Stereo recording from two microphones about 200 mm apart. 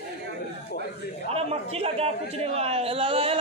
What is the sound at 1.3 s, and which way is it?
A man's voice, 30° right (ahead or behind).